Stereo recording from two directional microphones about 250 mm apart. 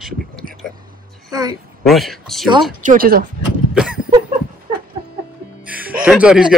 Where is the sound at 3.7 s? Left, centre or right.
Centre.